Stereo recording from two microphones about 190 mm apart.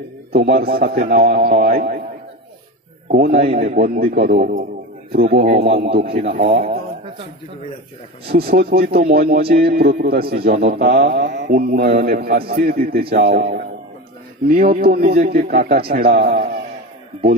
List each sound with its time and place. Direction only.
0.3 s speech: 55° right (ahead or behind)
3.1 s speech: 50° right (ahead or behind)
8.3 s speech: 55° right (ahead or behind)
12.2 s a man's voice: 55° right (ahead or behind)
15.2 s speech: 40° right (ahead or behind)